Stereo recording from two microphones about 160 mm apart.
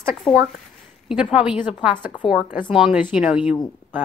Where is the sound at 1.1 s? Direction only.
5° right (ahead or behind).